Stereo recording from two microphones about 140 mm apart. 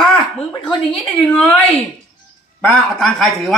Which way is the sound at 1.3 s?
10° left (ahead or behind).